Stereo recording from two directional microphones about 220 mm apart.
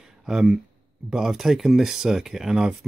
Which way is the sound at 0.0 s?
Centre (ahead or behind).